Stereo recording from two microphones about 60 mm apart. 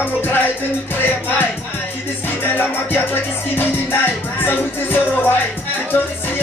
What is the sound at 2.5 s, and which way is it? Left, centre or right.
Music, left.